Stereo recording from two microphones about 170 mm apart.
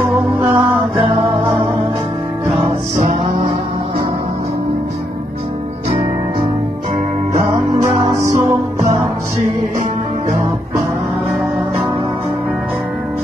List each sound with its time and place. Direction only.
0.0 s music: 15° right (ahead or behind)
0.9 s music: 30° right (ahead or behind)
8.2 s music: 15° right (ahead or behind)